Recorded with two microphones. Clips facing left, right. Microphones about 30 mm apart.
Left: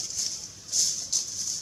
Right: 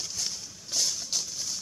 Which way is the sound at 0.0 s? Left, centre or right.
Centre.